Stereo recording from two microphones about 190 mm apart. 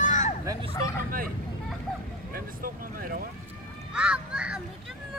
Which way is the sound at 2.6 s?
50° right (ahead or behind).